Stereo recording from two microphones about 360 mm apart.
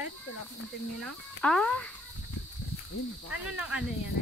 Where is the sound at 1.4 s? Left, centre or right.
Centre.